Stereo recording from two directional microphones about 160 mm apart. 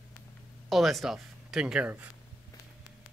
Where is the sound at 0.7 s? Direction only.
Centre (ahead or behind).